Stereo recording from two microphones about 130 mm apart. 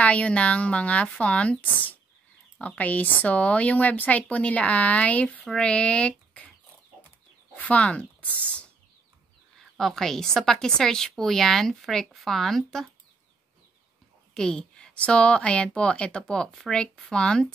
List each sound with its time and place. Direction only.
0.0 s a woman's voice: 10° left (ahead or behind)
7.5 s speech: 10° left (ahead or behind)
9.8 s a woman's voice: 5° left (ahead or behind)
14.3 s a woman's voice: 5° left (ahead or behind)